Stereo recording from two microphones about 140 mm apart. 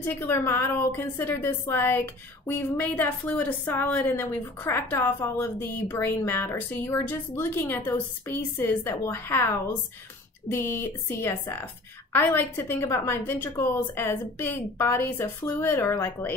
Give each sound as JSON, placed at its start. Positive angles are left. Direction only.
{"t": 0.0, "sound": "a woman's voice", "side_deg": 15}